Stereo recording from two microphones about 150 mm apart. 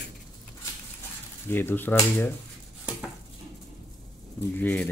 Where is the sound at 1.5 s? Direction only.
15° left (ahead or behind).